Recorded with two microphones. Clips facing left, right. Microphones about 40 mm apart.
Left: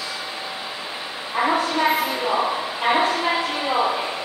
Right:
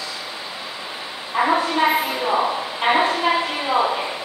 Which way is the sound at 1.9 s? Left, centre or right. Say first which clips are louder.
Right 1 dB; centre.